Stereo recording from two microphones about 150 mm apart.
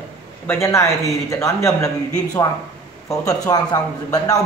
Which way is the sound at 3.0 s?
20° left (ahead or behind).